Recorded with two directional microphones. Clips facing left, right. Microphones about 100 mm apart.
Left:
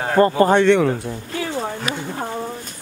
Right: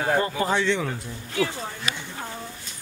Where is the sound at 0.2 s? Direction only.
50° left (ahead or behind).